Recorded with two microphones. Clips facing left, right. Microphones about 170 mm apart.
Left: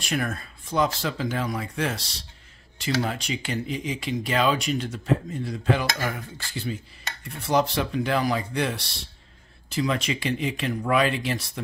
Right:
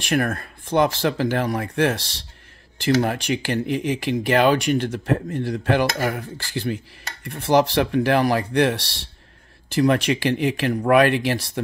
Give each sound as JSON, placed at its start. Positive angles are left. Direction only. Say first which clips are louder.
{"t": 0.1, "sound": "speech", "louder": "right 6 dB", "side_deg": -55}